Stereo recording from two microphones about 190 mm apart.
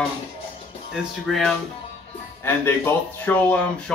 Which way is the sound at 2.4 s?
10° left (ahead or behind).